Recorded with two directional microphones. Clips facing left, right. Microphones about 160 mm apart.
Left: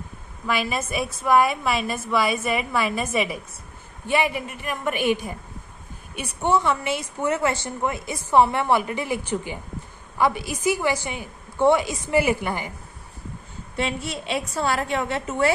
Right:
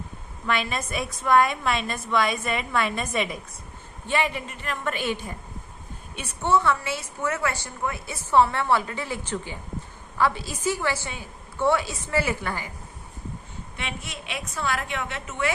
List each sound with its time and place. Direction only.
0.5 s a woman's voice: 5° left (ahead or behind)
13.7 s a woman's voice: 35° left (ahead or behind)